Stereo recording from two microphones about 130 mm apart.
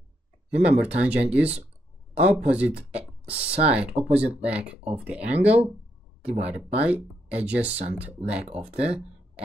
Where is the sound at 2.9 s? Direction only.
50° right (ahead or behind).